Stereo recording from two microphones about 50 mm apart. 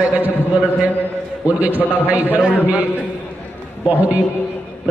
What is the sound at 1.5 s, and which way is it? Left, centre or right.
Speech, right.